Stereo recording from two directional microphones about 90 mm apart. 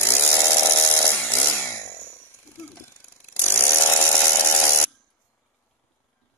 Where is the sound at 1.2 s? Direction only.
25° left (ahead or behind).